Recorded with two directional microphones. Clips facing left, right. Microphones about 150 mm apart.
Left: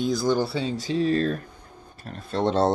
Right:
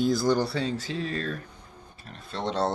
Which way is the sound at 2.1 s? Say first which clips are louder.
Left 6 dB; 45° left (ahead or behind).